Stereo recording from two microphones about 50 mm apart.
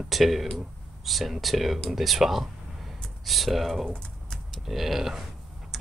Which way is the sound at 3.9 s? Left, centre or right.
Centre.